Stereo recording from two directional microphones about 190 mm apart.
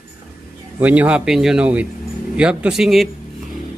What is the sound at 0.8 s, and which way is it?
Speech, 10° right (ahead or behind).